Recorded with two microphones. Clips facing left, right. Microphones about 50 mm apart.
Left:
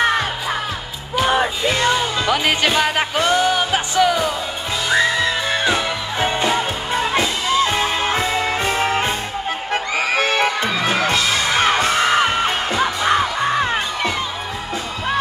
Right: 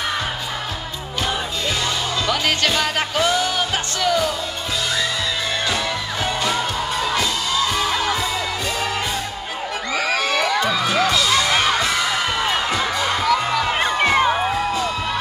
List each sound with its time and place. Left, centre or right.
1.7 s music: left
4.9 s music: left